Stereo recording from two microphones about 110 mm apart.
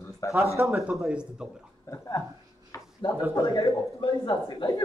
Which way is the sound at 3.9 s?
50° left (ahead or behind).